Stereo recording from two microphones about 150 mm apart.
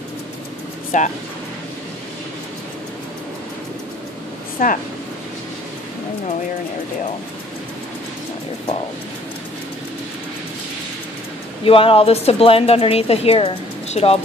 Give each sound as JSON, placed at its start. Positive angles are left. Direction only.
{"t": 0.9, "sound": "speech", "side_deg": 55}
{"t": 4.6, "sound": "speech", "side_deg": 65}
{"t": 11.6, "sound": "a woman's voice", "side_deg": 35}